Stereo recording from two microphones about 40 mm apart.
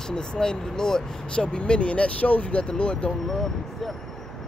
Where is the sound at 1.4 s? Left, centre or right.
Left.